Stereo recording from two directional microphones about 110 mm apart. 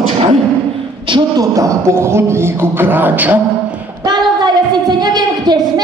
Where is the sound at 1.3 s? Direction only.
30° right (ahead or behind); by 3.8 s 15° right (ahead or behind).